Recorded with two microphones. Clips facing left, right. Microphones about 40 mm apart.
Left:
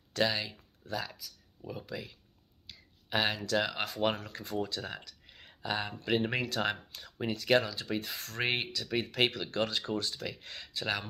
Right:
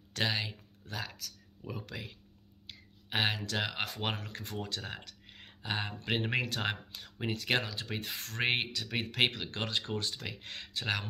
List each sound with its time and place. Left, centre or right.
0.1 s speech: right
1.7 s speech: right
2.6 s a sound: right
3.8 s speech: right
5.2 s a sound: right
6.0 s speech: right